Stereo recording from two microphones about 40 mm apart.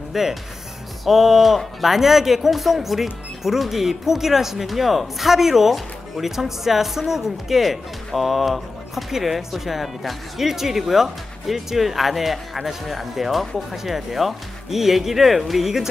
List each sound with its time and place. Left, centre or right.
0.1 s speech: centre